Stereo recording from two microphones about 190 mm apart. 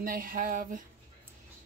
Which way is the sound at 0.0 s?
50° right (ahead or behind).